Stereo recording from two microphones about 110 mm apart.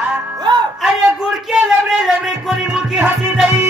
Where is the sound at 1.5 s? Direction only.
5° right (ahead or behind).